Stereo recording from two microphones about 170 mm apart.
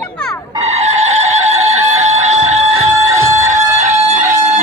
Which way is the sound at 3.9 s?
40° right (ahead or behind).